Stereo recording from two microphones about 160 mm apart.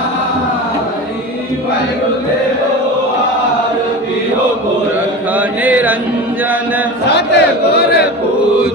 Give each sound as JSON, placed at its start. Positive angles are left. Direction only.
{"t": 5.3, "sound": "chant", "side_deg": -10}
{"t": 7.2, "sound": "crowd", "side_deg": 90}